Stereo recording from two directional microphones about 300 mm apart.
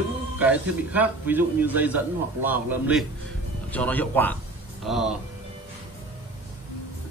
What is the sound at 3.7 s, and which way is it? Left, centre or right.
A man's voice, centre.